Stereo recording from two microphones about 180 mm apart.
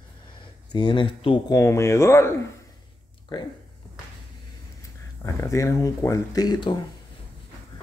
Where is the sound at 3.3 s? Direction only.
30° left (ahead or behind).